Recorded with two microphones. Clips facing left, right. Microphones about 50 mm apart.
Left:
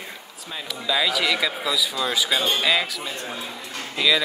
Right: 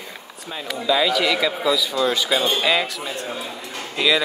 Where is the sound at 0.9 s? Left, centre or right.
Centre.